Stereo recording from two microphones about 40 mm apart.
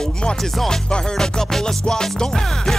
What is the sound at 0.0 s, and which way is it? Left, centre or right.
Music, left.